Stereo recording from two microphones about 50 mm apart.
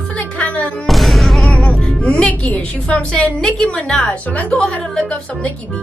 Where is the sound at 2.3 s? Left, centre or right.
Left.